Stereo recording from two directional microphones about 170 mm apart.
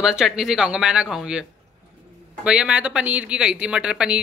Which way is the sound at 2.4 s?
5° right (ahead or behind).